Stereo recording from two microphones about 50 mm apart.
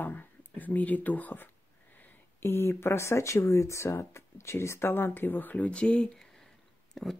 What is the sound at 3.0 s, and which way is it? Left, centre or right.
Speech, left.